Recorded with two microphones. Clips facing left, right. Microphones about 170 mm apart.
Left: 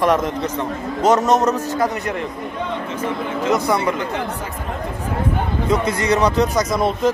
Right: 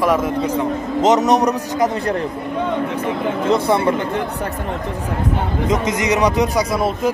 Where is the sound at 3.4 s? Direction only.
30° right (ahead or behind).